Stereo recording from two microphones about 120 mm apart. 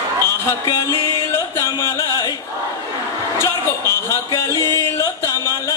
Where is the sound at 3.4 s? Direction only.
25° left (ahead or behind).